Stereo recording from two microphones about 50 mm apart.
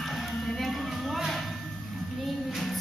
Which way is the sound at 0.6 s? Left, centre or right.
Centre.